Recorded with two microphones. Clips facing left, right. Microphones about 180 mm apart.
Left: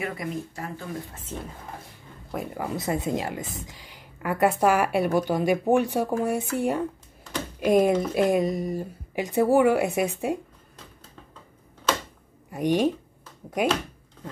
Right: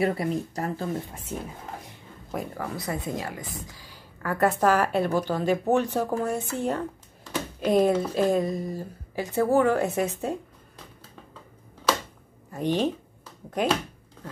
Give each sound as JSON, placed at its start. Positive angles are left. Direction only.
{"t": 0.0, "sound": "speech", "side_deg": -35}
{"t": 1.1, "sound": "speech", "side_deg": -10}
{"t": 2.5, "sound": "speech", "side_deg": 20}
{"t": 12.4, "sound": "speech", "side_deg": 15}